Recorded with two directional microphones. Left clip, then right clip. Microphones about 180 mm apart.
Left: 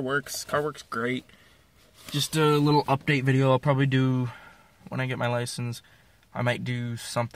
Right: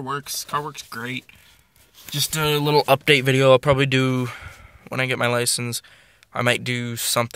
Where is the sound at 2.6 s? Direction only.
20° right (ahead or behind).